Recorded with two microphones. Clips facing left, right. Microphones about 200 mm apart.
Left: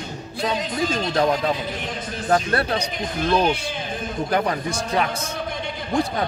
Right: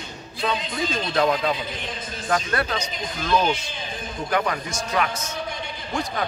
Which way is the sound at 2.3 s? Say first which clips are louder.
Left 4 dB; 30° left (ahead or behind).